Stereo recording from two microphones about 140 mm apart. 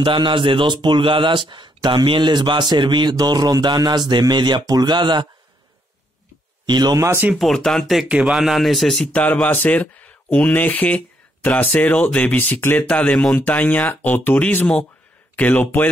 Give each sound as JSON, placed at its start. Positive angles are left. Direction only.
{"t": 0.0, "sound": "speech", "side_deg": -35}
{"t": 6.6, "sound": "speech", "side_deg": -30}
{"t": 7.3, "sound": "speech", "side_deg": 5}